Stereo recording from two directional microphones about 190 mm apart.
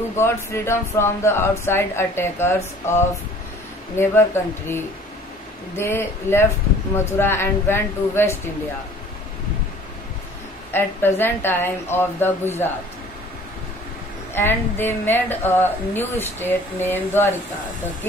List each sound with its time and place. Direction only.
0.1 s a woman's voice: 15° left (ahead or behind)
10.7 s a woman's voice: 10° left (ahead or behind)
14.3 s a woman's voice: 10° left (ahead or behind)